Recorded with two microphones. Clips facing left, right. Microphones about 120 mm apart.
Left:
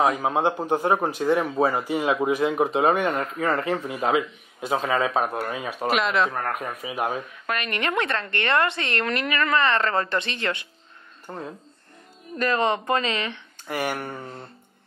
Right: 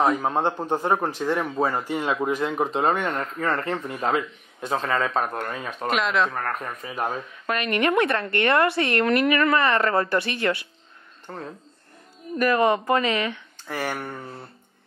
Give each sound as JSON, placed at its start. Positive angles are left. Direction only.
{"t": 0.0, "sound": "speech", "side_deg": 10}
{"t": 7.4, "sound": "a woman's voice", "side_deg": -20}
{"t": 11.2, "sound": "speech", "side_deg": 5}
{"t": 12.5, "sound": "a woman's voice", "side_deg": -20}
{"t": 13.1, "sound": "speech", "side_deg": 25}